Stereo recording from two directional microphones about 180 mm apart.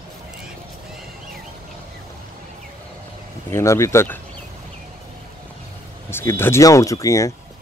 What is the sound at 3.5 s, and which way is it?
Speech, 15° left (ahead or behind).